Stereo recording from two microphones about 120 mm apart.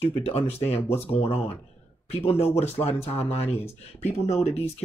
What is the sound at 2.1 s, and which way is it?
Speech, 55° left (ahead or behind).